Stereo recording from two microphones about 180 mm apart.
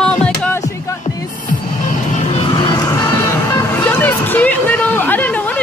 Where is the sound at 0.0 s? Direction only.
5° left (ahead or behind).